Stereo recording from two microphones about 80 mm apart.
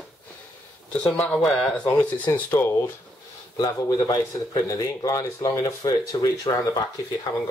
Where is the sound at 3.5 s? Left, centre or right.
Left.